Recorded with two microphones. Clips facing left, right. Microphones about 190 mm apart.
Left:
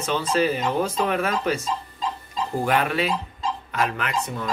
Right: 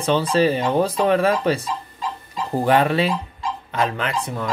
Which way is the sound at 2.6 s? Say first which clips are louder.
Right 6 dB; 30° right (ahead or behind).